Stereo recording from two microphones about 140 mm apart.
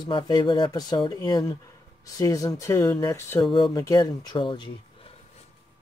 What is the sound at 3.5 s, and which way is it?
Speech, 35° left (ahead or behind).